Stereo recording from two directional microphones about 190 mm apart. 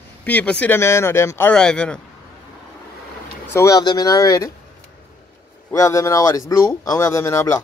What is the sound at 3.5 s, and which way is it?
Speech, 20° left (ahead or behind).